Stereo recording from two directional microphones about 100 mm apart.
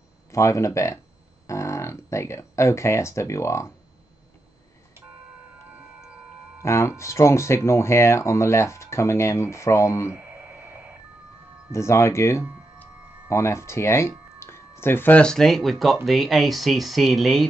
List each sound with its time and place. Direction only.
0.3 s speech: 30° left (ahead or behind)
6.6 s speech: 30° left (ahead or behind)
11.7 s speech: 30° left (ahead or behind)
15.2 s speech: 5° left (ahead or behind)